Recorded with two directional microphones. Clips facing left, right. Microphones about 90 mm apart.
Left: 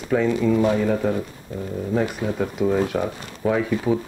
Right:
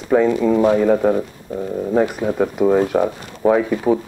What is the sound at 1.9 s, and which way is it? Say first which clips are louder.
Speech: right 5 dB; 25° right (ahead or behind).